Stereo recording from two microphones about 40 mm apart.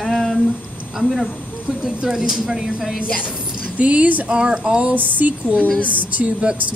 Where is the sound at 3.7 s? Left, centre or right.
Right.